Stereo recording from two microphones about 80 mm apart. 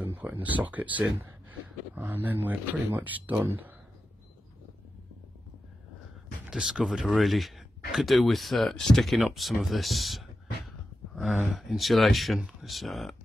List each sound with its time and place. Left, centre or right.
0.0 s speech: right
6.5 s speech: centre
11.5 s speech: centre